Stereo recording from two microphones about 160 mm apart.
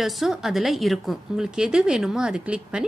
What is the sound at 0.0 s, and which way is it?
A woman's voice, centre (ahead or behind).